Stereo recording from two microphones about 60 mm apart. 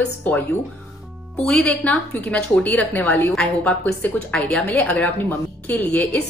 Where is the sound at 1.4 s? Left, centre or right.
Centre.